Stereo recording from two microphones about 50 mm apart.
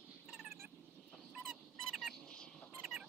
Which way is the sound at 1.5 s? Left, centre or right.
Centre.